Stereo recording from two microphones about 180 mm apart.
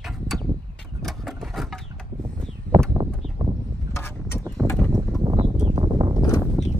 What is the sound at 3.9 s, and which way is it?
Vehicle, 15° left (ahead or behind).